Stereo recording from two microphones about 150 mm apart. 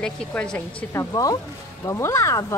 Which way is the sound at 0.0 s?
5° left (ahead or behind).